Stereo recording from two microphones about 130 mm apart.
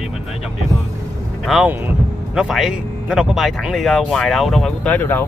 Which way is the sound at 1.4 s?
5° right (ahead or behind).